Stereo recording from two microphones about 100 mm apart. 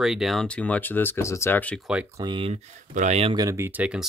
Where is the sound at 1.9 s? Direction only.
10° right (ahead or behind).